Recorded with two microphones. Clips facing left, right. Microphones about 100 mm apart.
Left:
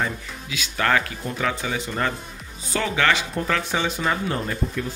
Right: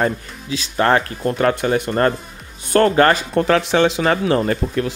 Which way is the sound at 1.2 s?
65° right (ahead or behind).